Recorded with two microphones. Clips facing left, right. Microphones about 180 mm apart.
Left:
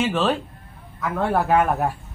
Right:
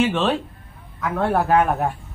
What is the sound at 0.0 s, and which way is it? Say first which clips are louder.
Speech: right 2 dB; centre (ahead or behind).